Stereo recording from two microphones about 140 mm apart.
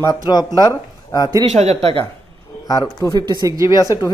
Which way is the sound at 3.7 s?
25° left (ahead or behind).